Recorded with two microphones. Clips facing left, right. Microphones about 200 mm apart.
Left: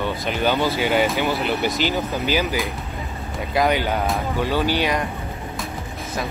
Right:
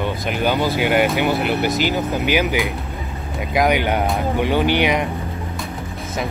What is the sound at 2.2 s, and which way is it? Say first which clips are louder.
Speech: right 4 dB; 15° right (ahead or behind).